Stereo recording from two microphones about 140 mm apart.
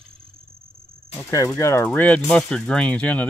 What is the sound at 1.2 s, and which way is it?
Speech, 20° left (ahead or behind).